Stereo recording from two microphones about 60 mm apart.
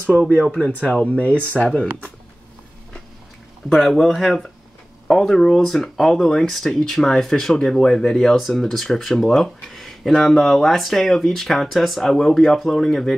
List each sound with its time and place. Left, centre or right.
0.4 s speech: left
3.6 s speech: centre